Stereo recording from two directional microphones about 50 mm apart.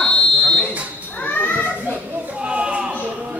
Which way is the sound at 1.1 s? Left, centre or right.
Left.